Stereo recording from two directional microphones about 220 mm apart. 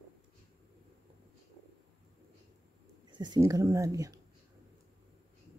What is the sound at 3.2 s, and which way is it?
Speech, 15° right (ahead or behind).